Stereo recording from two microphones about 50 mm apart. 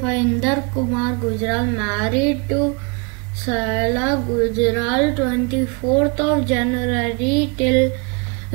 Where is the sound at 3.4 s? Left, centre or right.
Centre.